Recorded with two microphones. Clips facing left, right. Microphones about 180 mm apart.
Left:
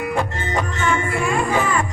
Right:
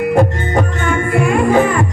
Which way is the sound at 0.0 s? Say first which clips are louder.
Right 9 dB; 50° right (ahead or behind).